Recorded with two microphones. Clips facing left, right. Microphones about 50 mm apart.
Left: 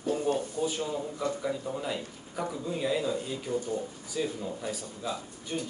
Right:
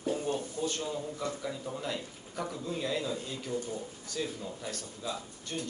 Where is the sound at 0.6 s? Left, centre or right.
Centre.